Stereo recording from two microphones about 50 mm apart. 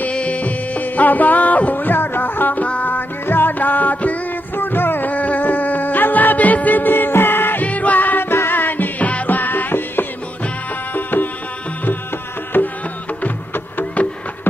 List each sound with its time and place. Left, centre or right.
0.0 s music: left
4.6 s music: left
5.1 s music: left
7.6 s music: left
8.3 s music: left
12.5 s music: left